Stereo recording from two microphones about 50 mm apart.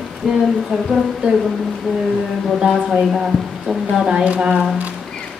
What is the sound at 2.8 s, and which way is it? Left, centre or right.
Speech, centre.